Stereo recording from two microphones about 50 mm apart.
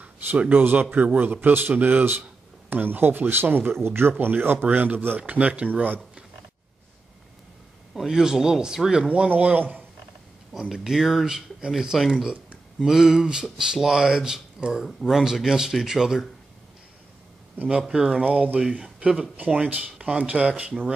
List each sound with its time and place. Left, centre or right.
0.5 s speech: right
7.9 s speech: centre
9.3 s speech: right
10.6 s speech: centre
17.8 s speech: centre
18.1 s speech: right